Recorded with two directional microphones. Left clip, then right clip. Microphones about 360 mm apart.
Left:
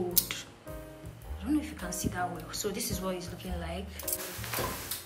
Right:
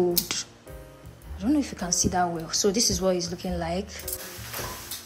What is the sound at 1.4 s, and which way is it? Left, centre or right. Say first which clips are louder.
A woman's voice: right 7 dB; centre.